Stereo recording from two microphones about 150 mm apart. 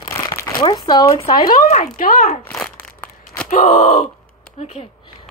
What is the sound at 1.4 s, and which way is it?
Speech, 60° left (ahead or behind).